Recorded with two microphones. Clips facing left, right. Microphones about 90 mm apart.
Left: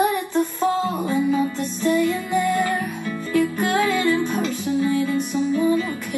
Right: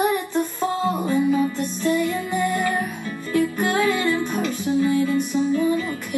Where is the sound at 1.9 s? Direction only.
20° right (ahead or behind).